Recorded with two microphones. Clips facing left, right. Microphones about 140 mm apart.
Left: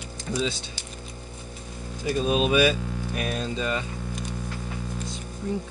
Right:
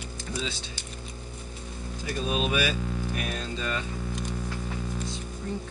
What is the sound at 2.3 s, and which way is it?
Speech, 20° left (ahead or behind).